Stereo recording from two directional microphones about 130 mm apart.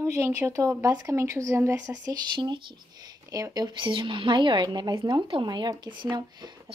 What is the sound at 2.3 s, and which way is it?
Speech, 35° right (ahead or behind).